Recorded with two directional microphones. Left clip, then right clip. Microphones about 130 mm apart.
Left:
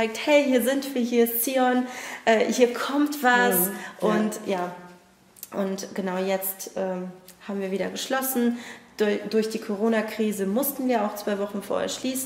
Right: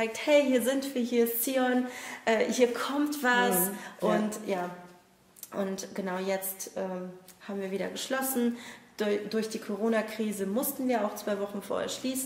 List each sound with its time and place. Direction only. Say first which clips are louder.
0.0 s speech: left 4 dB; 25° left (ahead or behind)